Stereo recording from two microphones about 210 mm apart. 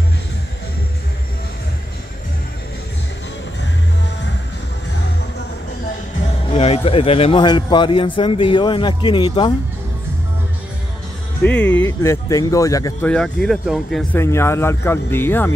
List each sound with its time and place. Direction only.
6.5 s a man's voice: 30° left (ahead or behind)
11.4 s speech: 5° left (ahead or behind)
13.1 s speech: 5° left (ahead or behind)
14.2 s speech: 10° left (ahead or behind)